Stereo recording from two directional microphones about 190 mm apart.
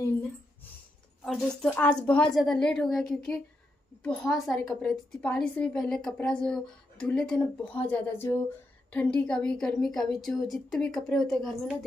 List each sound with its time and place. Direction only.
1.2 s a woman's voice: centre (ahead or behind)